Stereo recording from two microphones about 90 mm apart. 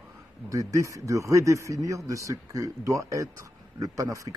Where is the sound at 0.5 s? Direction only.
40° right (ahead or behind).